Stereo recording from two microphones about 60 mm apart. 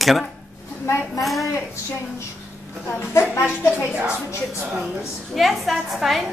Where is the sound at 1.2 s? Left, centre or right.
Centre.